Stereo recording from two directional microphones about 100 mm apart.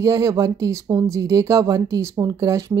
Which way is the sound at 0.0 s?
35° right (ahead or behind).